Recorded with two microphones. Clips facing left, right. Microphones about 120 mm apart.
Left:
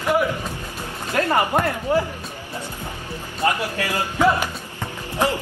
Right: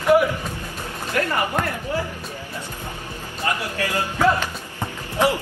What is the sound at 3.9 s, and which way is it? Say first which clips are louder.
Speech: even; 15° left (ahead or behind).